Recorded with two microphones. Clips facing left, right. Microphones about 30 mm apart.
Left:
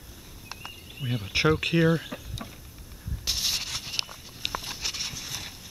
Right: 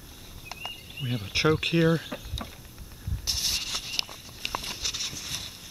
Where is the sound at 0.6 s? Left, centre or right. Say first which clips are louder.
Right 3 dB; centre.